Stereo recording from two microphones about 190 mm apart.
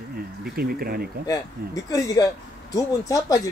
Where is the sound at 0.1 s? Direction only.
55° right (ahead or behind).